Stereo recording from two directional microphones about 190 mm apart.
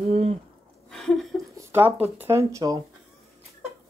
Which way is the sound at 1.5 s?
15° right (ahead or behind).